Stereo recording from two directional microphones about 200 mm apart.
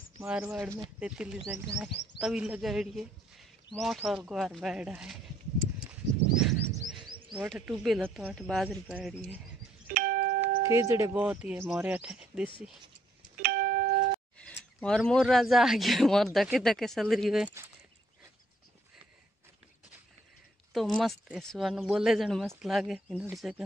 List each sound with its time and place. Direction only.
0.2 s speech: 5° right (ahead or behind)
6.3 s bird: 5° right (ahead or behind)
7.3 s speech: 5° right (ahead or behind)
9.9 s doorbell: 45° right (ahead or behind)
10.6 s speech: 15° right (ahead or behind)
13.4 s doorbell: 45° right (ahead or behind)
14.4 s speech: 5° left (ahead or behind)
20.7 s speech: centre (ahead or behind)